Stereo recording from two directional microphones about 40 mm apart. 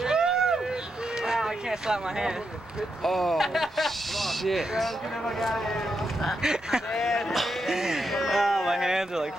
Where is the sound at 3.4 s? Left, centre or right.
Centre.